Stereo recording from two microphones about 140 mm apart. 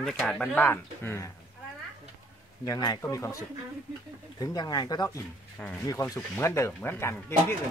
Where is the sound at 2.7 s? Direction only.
25° left (ahead or behind).